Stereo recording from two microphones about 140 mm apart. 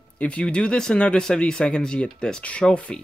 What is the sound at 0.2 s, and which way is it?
Speech, 10° left (ahead or behind).